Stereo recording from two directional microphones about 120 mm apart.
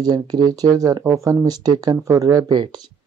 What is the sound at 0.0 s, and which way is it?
Speech, 35° right (ahead or behind).